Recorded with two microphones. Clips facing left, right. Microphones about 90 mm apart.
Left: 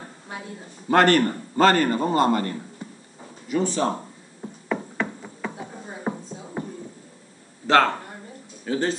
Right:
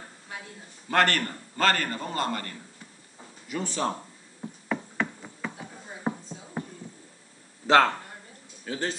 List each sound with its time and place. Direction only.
0.8 s a man's voice: 15° left (ahead or behind)
3.4 s speech: centre (ahead or behind)
4.6 s a sound: centre (ahead or behind)
7.6 s speech: 10° right (ahead or behind)
8.6 s a man's voice: 5° left (ahead or behind)